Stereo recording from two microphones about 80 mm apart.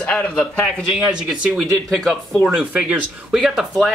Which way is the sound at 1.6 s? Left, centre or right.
Centre.